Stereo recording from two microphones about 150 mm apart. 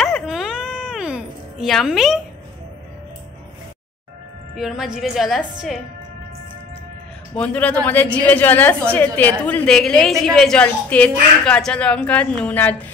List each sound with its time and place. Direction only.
0.0 s music: centre (ahead or behind)
4.6 s a woman's voice: 5° right (ahead or behind)
7.3 s a woman's voice: 10° left (ahead or behind)